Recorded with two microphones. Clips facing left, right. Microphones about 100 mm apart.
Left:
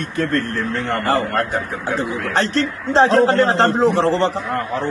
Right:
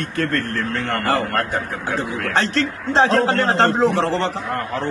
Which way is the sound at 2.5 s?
40° left (ahead or behind).